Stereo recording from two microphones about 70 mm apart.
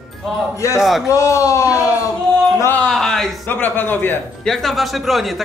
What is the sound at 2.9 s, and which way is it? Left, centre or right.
Speech, centre.